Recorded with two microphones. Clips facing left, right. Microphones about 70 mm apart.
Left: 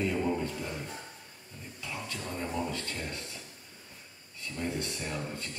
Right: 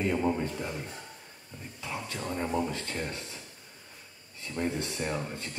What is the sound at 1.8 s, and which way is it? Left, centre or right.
Speech, right.